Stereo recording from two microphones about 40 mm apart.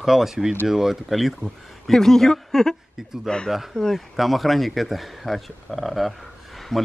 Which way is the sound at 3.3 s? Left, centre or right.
Centre.